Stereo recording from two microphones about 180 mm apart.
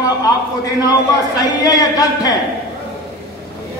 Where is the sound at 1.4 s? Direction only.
20° left (ahead or behind).